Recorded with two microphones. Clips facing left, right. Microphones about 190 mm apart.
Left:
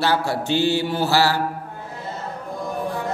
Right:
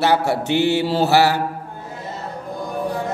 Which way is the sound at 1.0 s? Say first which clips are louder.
Right 5 dB; 20° right (ahead or behind).